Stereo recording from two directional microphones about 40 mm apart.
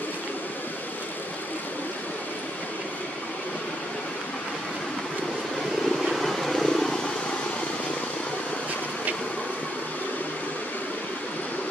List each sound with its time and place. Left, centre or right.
5.9 s vehicle: centre